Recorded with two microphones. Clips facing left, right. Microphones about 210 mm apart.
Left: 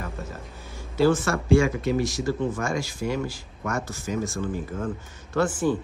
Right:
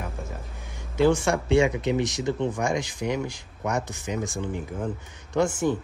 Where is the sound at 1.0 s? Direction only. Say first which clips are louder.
Even; 15° right (ahead or behind).